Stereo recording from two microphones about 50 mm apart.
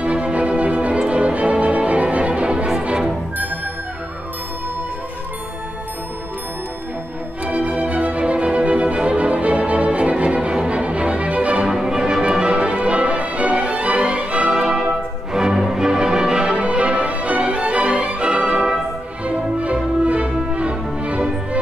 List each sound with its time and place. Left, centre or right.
0.0 s music: right
7.4 s music: right
11.6 s music: centre